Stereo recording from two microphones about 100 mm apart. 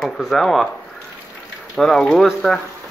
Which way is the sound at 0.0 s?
Centre (ahead or behind).